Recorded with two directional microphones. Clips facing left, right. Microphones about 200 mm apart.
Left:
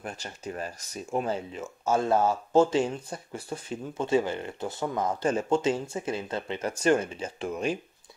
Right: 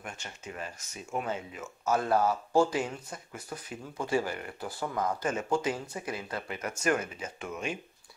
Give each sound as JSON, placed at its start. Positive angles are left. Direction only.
{"t": 0.0, "sound": "speech", "side_deg": 35}